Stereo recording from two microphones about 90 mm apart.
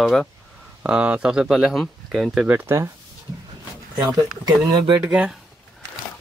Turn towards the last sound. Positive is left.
turn(degrees=-15)  # may be behind; listen again after turning